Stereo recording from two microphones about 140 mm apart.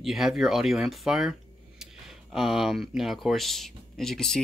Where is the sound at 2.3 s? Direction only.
Centre (ahead or behind).